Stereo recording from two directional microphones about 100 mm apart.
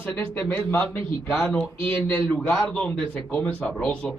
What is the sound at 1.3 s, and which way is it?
A man's voice, 10° left (ahead or behind).